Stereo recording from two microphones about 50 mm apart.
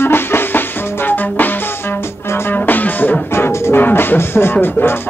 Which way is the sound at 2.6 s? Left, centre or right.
Left.